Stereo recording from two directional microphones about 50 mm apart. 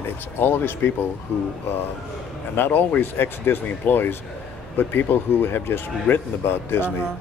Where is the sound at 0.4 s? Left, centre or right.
Left.